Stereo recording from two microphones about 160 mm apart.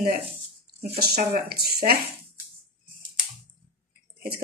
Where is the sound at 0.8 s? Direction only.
75° right (ahead or behind).